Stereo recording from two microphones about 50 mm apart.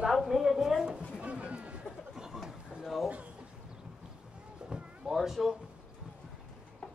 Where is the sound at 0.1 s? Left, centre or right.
Centre; by 1.8 s right.